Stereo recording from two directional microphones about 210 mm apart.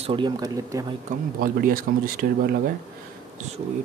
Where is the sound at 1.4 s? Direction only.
45° right (ahead or behind).